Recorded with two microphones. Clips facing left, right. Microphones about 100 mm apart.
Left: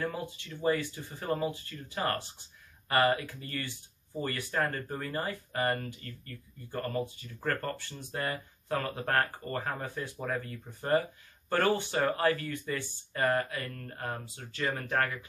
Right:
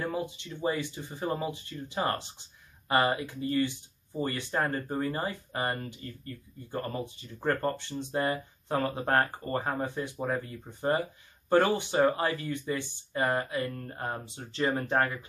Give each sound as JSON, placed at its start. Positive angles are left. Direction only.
{"t": 0.0, "sound": "speech", "side_deg": -15}